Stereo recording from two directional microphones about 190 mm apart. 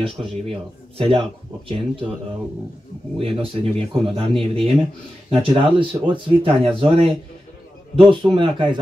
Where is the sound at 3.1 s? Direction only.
30° right (ahead or behind).